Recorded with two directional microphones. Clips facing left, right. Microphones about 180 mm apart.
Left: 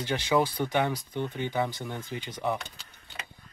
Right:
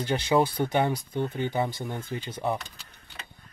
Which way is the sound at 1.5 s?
20° right (ahead or behind).